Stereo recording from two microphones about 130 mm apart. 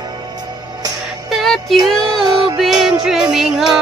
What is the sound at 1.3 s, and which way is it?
Music, centre (ahead or behind).